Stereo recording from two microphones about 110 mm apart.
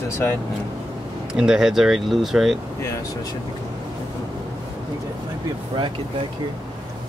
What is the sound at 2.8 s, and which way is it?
Speech, 30° left (ahead or behind).